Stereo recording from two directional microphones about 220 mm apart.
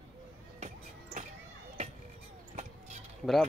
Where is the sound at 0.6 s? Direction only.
35° right (ahead or behind).